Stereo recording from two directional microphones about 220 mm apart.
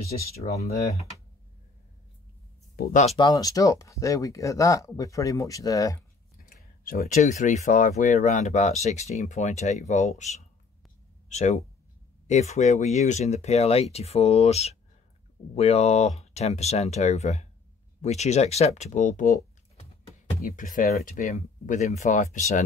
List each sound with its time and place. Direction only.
2.7 s speech: 40° left (ahead or behind)
3.2 s speech: 15° left (ahead or behind)
6.5 s speech: 40° left (ahead or behind)
20.4 s speech: 40° left (ahead or behind)